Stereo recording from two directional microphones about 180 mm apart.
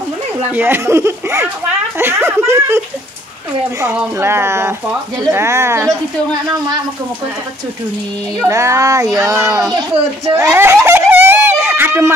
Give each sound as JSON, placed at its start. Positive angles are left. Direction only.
{"t": 0.5, "sound": "speech", "side_deg": -10}
{"t": 3.9, "sound": "speech", "side_deg": -10}
{"t": 8.5, "sound": "speech", "side_deg": -15}